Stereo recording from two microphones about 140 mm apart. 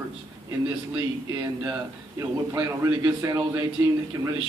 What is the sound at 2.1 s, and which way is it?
A man's voice, 25° right (ahead or behind).